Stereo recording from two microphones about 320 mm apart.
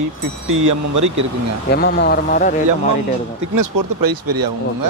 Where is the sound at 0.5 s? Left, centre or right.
Right.